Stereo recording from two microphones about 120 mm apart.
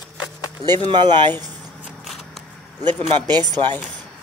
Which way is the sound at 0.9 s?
40° right (ahead or behind).